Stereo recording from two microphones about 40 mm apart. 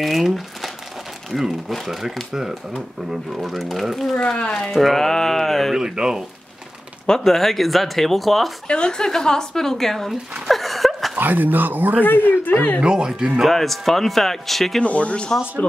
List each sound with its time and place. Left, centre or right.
0.0 s speech: centre
2.3 s speech: centre
4.2 s speech: left
4.6 s a woman's voice: centre
5.8 s speech: centre
7.2 s speech: centre
8.6 s a woman's voice: left
10.5 s a sound: centre
11.1 s speech: right
12.3 s speech: left
12.8 s speech: centre
13.4 s speech: centre
14.8 s speech: left